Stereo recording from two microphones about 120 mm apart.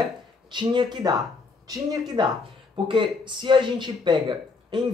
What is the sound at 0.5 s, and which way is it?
Speech, 40° right (ahead or behind).